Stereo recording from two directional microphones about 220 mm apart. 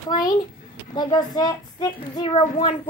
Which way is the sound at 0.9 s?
20° left (ahead or behind).